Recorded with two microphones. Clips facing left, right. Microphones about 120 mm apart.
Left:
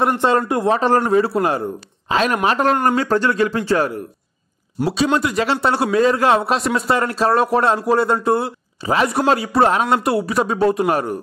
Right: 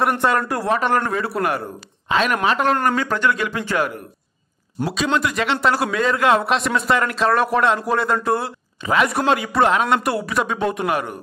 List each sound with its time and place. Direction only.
0.0 s a man's voice: 25° left (ahead or behind)
5.2 s a man's voice: 30° left (ahead or behind)